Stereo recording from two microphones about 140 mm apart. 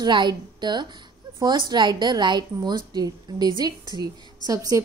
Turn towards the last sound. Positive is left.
turn(degrees=-25)  # may be behind; listen again after turning